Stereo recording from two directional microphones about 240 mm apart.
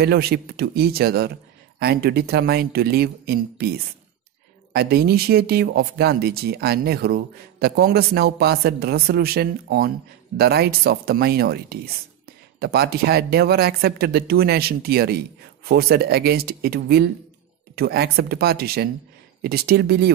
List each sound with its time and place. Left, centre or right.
0.0 s speech: right
4.7 s speech: right